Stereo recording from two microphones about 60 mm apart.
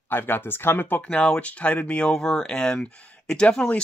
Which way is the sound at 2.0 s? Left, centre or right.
Centre.